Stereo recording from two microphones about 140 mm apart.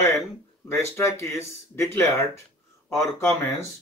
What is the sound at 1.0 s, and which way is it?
Speech, 20° left (ahead or behind).